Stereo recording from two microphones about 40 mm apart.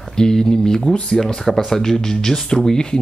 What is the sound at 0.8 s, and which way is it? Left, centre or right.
Speech, left.